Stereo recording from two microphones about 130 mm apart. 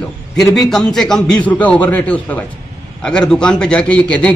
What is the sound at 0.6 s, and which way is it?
A man's voice, centre (ahead or behind).